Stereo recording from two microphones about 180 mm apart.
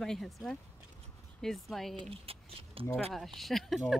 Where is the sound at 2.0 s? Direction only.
30° right (ahead or behind).